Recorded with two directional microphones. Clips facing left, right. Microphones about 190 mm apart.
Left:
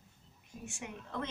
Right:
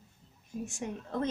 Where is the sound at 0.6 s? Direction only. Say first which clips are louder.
Right 7 dB; 40° right (ahead or behind).